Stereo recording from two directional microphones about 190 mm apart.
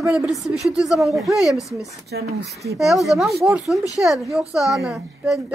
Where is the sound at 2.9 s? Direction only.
Centre (ahead or behind).